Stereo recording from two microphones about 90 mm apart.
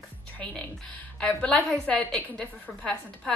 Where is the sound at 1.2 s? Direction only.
10° left (ahead or behind).